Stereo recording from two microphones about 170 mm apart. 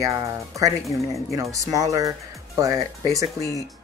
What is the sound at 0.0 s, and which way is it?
Speech, 20° right (ahead or behind).